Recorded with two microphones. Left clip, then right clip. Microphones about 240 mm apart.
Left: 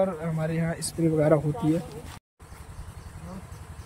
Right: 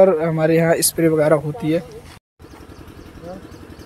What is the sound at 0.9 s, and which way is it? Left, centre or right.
Speech, centre.